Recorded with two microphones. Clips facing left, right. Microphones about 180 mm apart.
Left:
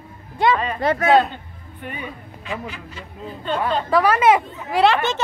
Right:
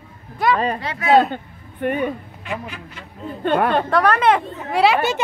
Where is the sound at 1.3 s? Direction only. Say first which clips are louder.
Right 7 dB; 55° right (ahead or behind).